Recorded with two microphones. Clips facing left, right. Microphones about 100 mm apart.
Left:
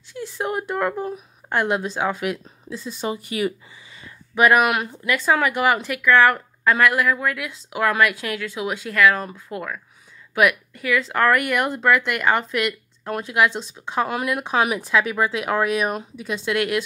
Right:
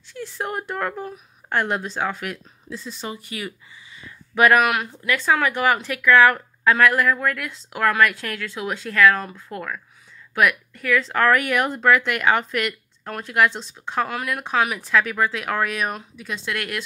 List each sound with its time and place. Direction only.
0.1 s speech: 5° left (ahead or behind)
4.4 s speech: 15° left (ahead or behind)
4.9 s a woman's voice: 5° left (ahead or behind)
11.1 s speech: 5° left (ahead or behind)